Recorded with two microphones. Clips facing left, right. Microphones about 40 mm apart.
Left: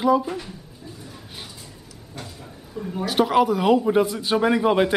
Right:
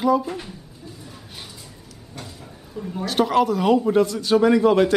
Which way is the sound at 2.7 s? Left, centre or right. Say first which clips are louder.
Even; centre.